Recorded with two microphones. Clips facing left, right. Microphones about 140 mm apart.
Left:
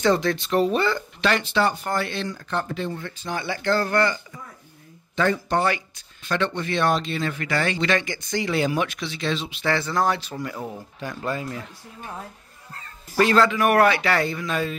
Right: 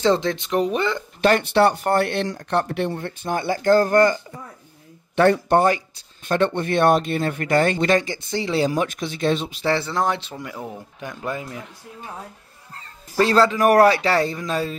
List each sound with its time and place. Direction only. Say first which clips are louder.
0.0 s speech: right 1 dB; 25° right (ahead or behind)
1.2 s speech: right 6 dB; 55° right (ahead or behind)
5.1 s speech: right 6 dB; 65° right (ahead or behind)
5.6 s speech: right 5 dB; 40° right (ahead or behind)
9.6 s speech: right 1 dB; 30° right (ahead or behind)
13.2 s speech: right 2 dB; 35° right (ahead or behind)